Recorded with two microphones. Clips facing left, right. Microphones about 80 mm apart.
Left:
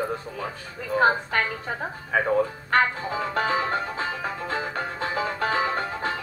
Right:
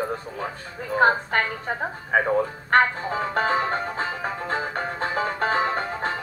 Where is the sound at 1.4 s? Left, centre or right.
Centre.